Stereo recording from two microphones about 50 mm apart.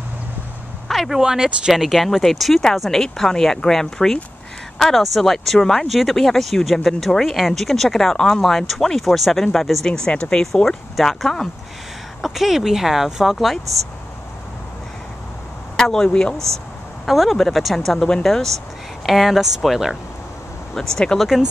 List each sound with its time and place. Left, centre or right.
0.8 s a sound: centre
1.2 s speech: centre
1.7 s speech: centre
9.8 s speech: centre
10.5 s speech: centre
15.7 s speech: centre
17.0 s speech: centre
17.9 s speech: centre
20.7 s speech: centre